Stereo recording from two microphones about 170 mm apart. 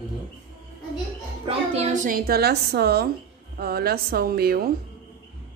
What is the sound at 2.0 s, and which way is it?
Speech, 60° right (ahead or behind).